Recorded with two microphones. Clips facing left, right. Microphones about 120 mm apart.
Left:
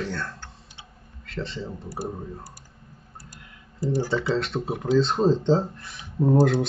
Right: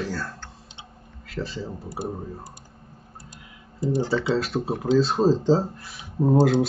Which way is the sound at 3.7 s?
20° right (ahead or behind).